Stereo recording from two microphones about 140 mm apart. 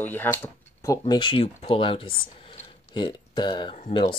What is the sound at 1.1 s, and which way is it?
Speech, 35° left (ahead or behind).